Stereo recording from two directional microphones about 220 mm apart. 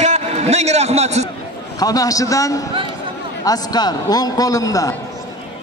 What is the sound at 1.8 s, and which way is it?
A man's voice, 15° left (ahead or behind).